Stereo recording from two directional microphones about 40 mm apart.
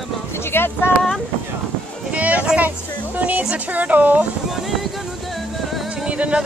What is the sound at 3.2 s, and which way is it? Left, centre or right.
Speech, right.